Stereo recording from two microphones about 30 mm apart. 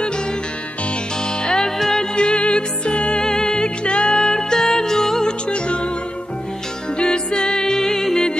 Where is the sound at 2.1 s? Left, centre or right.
Left.